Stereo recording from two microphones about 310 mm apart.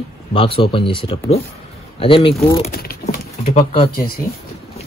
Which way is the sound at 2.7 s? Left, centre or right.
Left.